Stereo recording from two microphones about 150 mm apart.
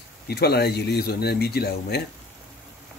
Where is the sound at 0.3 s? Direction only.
90° left.